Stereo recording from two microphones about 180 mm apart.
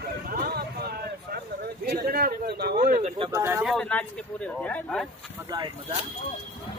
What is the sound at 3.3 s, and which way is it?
Speech, 15° right (ahead or behind).